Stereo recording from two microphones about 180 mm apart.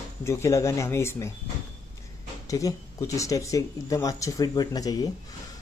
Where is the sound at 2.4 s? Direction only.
20° left (ahead or behind).